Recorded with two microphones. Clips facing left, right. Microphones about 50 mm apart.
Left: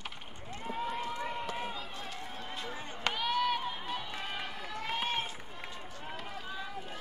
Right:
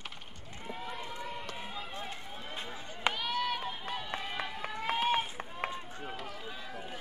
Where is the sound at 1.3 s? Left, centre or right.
Centre.